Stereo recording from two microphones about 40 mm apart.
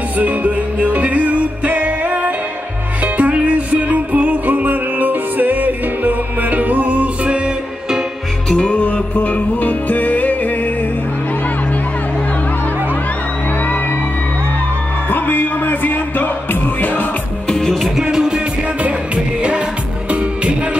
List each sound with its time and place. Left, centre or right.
0.2 s music: right
8.5 s music: left
8.8 s music: left
15.0 s music: left
17.5 s music: centre
17.7 s music: centre
18.0 s music: centre
18.8 s music: right